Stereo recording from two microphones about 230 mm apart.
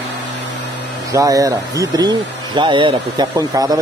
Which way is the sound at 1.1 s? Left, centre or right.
Centre.